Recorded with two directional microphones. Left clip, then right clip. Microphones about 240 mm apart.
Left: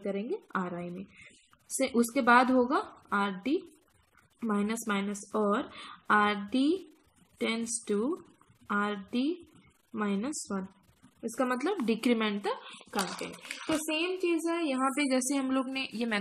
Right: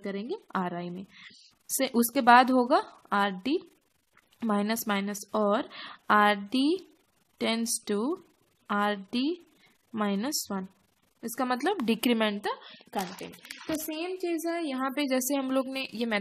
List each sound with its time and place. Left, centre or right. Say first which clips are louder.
0.0 s a woman's voice: left 1 dB; right
1.9 s a woman's voice: right 4 dB; right
13.7 s a woman's voice: left 2 dB; right